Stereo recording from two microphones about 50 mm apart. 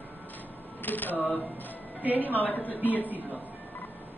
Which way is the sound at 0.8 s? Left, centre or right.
Left.